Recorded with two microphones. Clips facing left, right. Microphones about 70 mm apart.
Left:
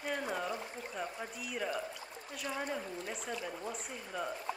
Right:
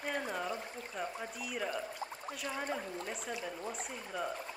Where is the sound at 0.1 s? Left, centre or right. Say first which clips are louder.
Left 1 dB; centre.